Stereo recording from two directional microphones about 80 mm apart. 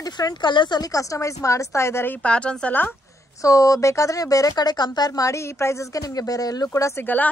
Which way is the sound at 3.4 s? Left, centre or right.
Left.